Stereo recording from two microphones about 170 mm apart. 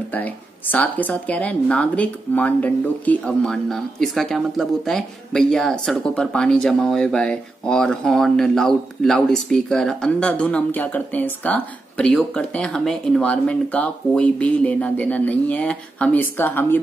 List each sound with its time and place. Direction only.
0.1 s speech: 10° left (ahead or behind)